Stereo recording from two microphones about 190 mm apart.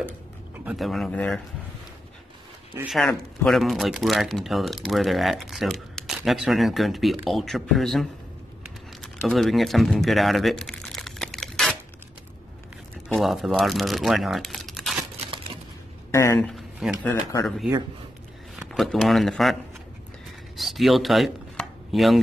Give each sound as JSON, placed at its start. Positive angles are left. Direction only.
{"t": 0.7, "sound": "speech", "side_deg": 0}
{"t": 2.8, "sound": "speech", "side_deg": 0}
{"t": 9.0, "sound": "crumpling", "side_deg": 0}
{"t": 13.1, "sound": "speech", "side_deg": 0}
{"t": 16.1, "sound": "speech", "side_deg": 15}
{"t": 16.3, "sound": "speech", "side_deg": 0}
{"t": 17.1, "sound": "speech", "side_deg": 15}
{"t": 18.6, "sound": "speech", "side_deg": 0}
{"t": 20.5, "sound": "chopping", "side_deg": 0}